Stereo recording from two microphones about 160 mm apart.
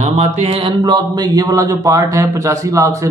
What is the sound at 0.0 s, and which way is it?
A man's voice, 45° right (ahead or behind).